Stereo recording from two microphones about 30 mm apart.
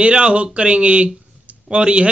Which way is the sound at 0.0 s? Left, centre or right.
Right.